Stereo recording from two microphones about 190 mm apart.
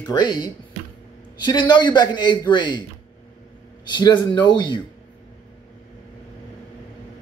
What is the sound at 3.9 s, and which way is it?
Speech, 25° left (ahead or behind).